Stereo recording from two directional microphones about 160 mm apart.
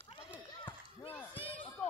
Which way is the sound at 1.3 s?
35° left (ahead or behind).